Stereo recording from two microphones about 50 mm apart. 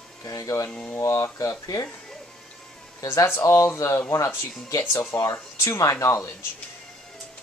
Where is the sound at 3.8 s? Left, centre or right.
Left.